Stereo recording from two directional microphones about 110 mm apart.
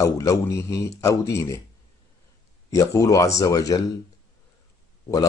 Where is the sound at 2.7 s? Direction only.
30° left (ahead or behind).